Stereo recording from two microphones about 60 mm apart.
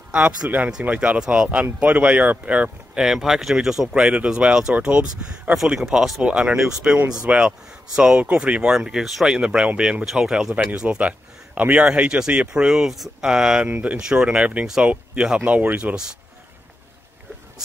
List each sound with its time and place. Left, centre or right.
0.4 s speech: right
0.8 s speech: right
3.0 s speech: centre
3.9 s speech: centre
5.8 s speech: centre
6.2 s speech: centre
8.7 s speech: centre
15.4 s speech: right